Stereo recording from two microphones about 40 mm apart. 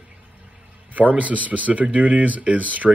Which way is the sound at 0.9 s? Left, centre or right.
Right.